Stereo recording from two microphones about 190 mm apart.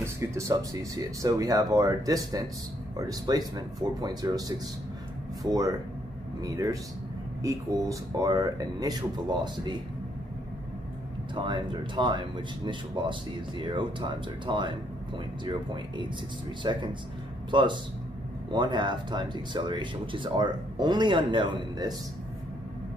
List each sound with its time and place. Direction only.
0.0 s speech: 15° right (ahead or behind)
11.3 s speech: 25° right (ahead or behind)